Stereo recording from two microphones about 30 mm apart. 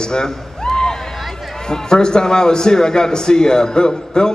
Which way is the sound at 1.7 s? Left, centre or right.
Left.